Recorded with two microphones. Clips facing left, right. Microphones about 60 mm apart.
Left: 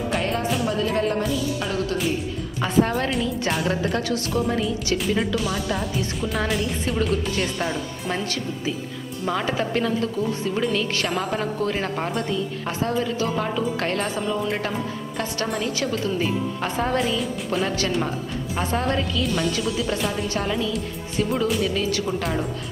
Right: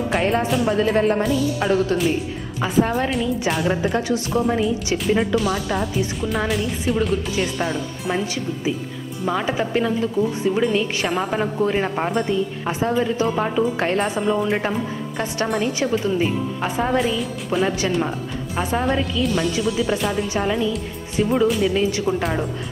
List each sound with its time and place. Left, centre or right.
0.7 s a woman's voice: right
2.0 s a woman's voice: centre
3.7 s a woman's voice: centre
5.2 s a woman's voice: centre
9.2 s a woman's voice: centre
21.7 s a woman's voice: right
22.2 s a woman's voice: centre